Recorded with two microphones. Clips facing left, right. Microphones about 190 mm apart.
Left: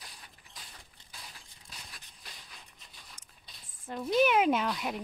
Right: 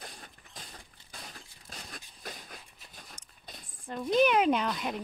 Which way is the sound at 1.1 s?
50° right (ahead or behind).